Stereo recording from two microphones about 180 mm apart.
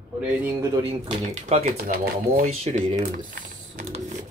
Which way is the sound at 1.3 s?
35° right (ahead or behind).